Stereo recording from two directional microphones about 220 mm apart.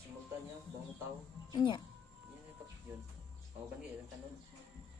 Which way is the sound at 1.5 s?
20° left (ahead or behind).